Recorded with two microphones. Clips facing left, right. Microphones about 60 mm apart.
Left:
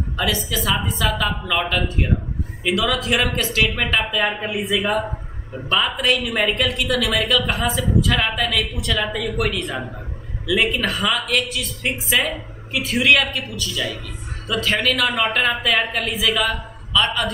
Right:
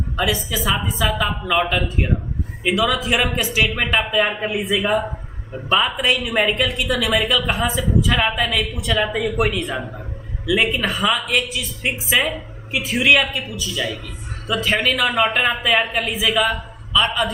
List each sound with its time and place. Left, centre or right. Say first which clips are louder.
0.1 s a woman's voice: right 1 dB; centre
16.2 s a woman's voice: right 2 dB; centre
16.4 s a sound: right 2 dB; centre
17.0 s a woman's voice: right 2 dB; centre